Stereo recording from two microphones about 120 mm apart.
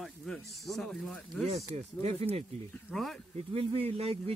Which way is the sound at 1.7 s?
60° right (ahead or behind).